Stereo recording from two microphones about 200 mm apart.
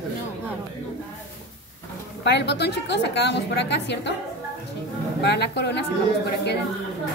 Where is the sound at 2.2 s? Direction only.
60° left (ahead or behind).